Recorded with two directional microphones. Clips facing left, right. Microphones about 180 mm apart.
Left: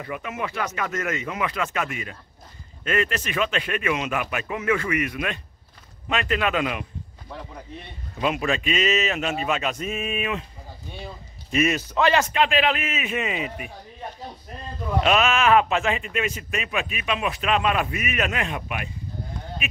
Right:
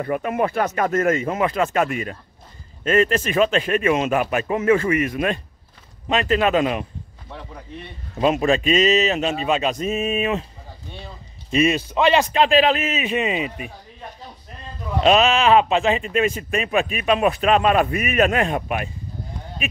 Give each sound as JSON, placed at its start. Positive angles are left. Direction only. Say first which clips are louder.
{"t": 0.0, "sound": "speech", "louder": "right 9 dB", "side_deg": -45}
{"t": 8.2, "sound": "speech", "louder": "right 6 dB", "side_deg": -35}
{"t": 9.8, "sound": "speech", "louder": "right 6 dB", "side_deg": -35}
{"t": 11.5, "sound": "a man's voice", "louder": "right 3 dB", "side_deg": -25}
{"t": 12.3, "sound": "speech", "louder": "right 5 dB", "side_deg": -35}
{"t": 12.9, "sound": "a man's voice", "louder": "right 5 dB", "side_deg": -20}
{"t": 15.0, "sound": "speech", "louder": "right 5 dB", "side_deg": -30}